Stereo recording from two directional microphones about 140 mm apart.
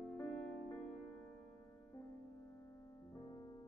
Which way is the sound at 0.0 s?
5° left (ahead or behind).